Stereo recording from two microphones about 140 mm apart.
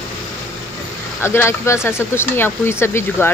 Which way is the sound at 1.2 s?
20° left (ahead or behind).